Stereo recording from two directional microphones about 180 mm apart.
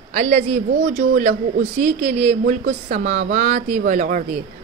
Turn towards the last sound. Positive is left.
turn(degrees=-45)  # may be behind; listen again after turning